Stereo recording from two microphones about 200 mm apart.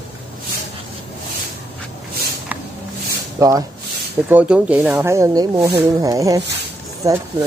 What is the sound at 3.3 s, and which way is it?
Speech, 15° right (ahead or behind).